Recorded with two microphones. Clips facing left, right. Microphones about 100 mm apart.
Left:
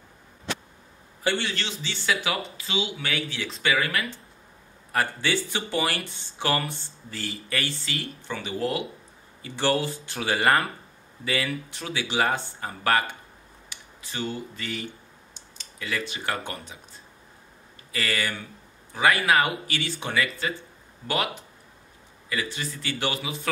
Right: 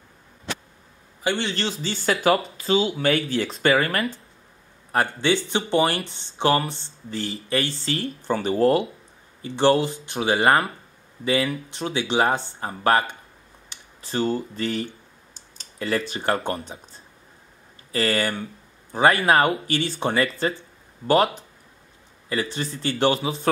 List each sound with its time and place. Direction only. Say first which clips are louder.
1.2 s a man's voice: right 2 dB; 20° right (ahead or behind)
1.5 s speech: right 6 dB; 40° right (ahead or behind)
4.9 s speech: right 4 dB; 25° right (ahead or behind); by 8.8 s 40° right (ahead or behind)
9.4 s speech: right 6 dB; 25° right (ahead or behind)
13.7 s speech: right 8 dB; 40° right (ahead or behind)
17.9 s speech: right 6 dB; 35° right (ahead or behind)
22.3 s speech: right 4 dB; 35° right (ahead or behind)